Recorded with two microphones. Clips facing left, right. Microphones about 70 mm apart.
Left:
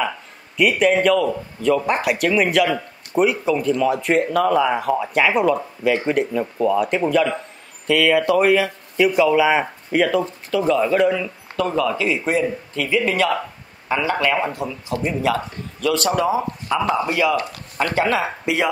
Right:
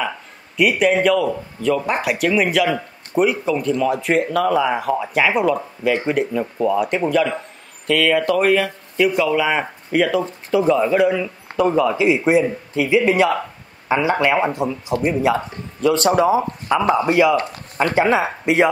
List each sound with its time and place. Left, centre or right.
0.6 s speech: centre
10.7 s a man's voice: centre